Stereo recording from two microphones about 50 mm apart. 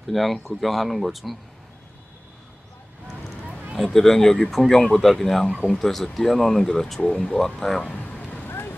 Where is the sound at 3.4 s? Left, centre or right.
Right.